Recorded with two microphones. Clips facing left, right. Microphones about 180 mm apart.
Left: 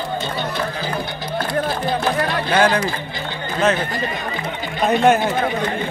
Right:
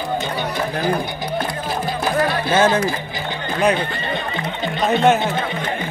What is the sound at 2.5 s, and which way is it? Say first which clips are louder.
Music: even; 25° right (ahead or behind).